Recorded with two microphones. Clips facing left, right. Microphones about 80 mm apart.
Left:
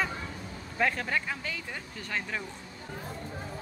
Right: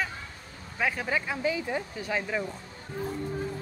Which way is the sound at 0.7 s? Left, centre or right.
Centre.